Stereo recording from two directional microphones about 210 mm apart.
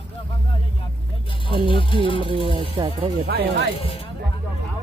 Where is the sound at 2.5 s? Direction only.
25° right (ahead or behind).